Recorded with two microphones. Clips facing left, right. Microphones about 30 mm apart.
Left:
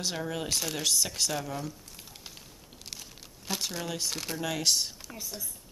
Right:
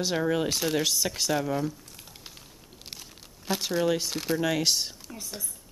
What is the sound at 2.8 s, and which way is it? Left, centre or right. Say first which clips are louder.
Speech: even; centre.